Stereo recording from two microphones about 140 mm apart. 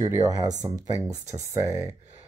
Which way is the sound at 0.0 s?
25° right (ahead or behind).